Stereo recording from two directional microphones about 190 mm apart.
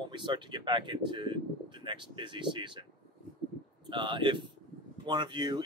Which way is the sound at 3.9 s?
25° right (ahead or behind).